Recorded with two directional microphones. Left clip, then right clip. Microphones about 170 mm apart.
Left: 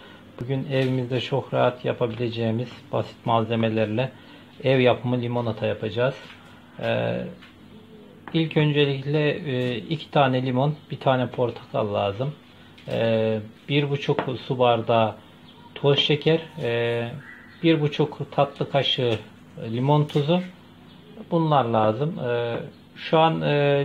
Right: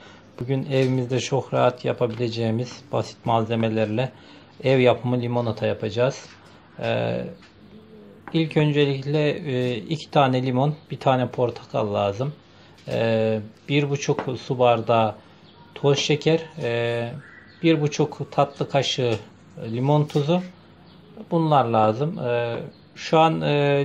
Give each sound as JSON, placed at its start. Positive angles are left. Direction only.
{"t": 0.5, "sound": "speech", "side_deg": -25}
{"t": 8.3, "sound": "speech", "side_deg": -20}